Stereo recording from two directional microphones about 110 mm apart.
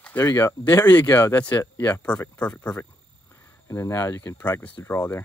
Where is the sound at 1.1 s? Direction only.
15° left (ahead or behind).